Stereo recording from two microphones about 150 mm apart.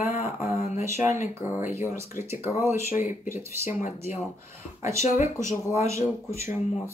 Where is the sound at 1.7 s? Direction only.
20° right (ahead or behind).